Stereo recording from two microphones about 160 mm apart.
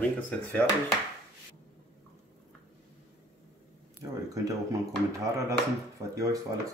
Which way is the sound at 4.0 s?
20° right (ahead or behind).